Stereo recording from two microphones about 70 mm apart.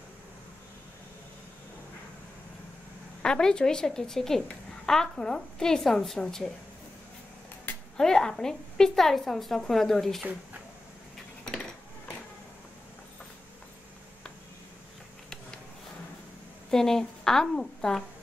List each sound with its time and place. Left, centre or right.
3.2 s a woman's voice: centre
8.0 s a woman's voice: centre
16.7 s a woman's voice: centre